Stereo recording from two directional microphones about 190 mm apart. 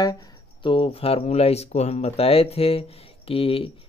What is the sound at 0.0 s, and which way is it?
Speech, 25° left (ahead or behind).